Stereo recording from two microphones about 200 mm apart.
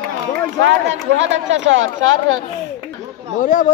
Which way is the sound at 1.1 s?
65° right (ahead or behind).